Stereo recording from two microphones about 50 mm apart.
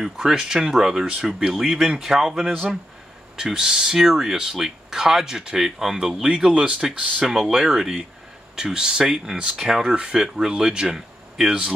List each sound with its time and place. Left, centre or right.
0.0 s speech: centre
7.2 s speech: centre
8.5 s speech: centre
9.0 s speech: centre